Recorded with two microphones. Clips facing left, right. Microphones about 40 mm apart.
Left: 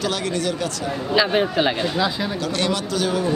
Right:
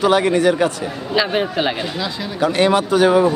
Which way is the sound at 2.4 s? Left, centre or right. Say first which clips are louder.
Right 11 dB; right.